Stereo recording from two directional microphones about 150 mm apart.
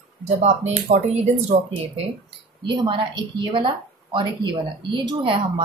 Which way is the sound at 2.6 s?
30° right (ahead or behind).